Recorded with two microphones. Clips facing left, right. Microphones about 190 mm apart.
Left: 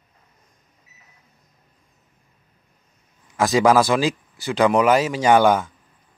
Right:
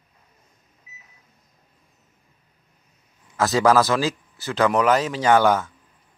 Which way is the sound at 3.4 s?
15° left (ahead or behind).